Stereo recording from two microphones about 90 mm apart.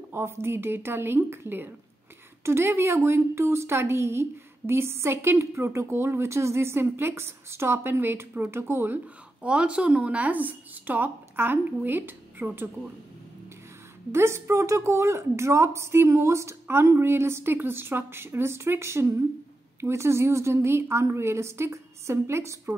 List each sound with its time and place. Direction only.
0.1 s a woman's voice: 30° right (ahead or behind)
14.1 s a woman's voice: 30° right (ahead or behind)